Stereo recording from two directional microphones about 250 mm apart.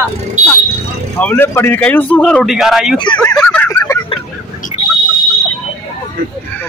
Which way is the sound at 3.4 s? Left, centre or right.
Centre.